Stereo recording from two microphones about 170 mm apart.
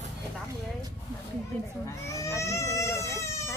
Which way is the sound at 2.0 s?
15° left (ahead or behind).